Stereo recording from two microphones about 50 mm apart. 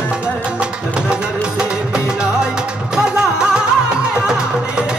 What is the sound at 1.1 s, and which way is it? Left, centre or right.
Music, centre.